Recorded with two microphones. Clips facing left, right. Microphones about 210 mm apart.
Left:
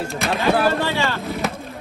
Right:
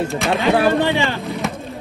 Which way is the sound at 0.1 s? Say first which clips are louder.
Right 4 dB; centre (ahead or behind).